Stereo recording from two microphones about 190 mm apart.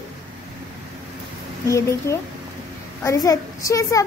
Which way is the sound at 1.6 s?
15° left (ahead or behind).